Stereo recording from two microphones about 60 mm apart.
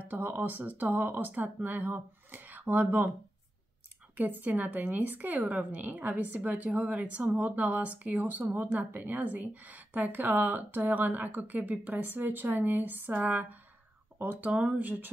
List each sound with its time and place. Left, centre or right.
0.1 s speech: right
4.2 s speech: right